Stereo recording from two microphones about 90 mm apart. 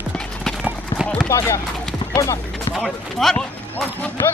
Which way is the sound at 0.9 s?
30° left (ahead or behind).